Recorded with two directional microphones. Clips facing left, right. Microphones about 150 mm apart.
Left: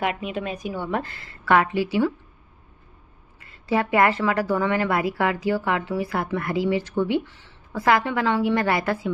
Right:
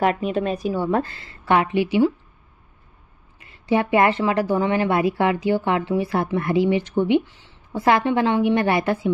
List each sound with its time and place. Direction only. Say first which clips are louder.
0.0 s speech: right 6 dB; 40° right (ahead or behind); by 2.1 s 20° right (ahead or behind)
3.3 s speech: right 3 dB; 20° right (ahead or behind)